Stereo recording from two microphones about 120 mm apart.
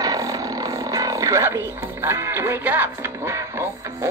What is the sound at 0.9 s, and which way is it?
Speech, 30° right (ahead or behind).